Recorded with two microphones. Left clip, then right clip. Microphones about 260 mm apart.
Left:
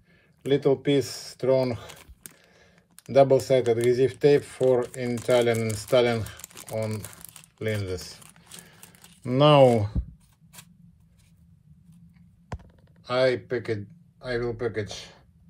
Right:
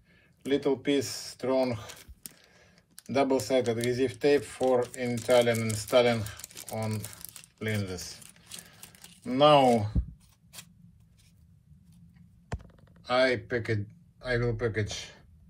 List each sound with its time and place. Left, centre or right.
0.5 s speech: left
3.1 s speech: left
8.5 s a sound: centre
9.2 s speech: left
13.0 s speech: centre